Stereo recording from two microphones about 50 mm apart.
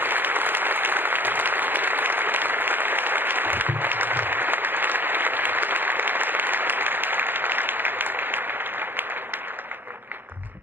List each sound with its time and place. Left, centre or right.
0.0 s applause: right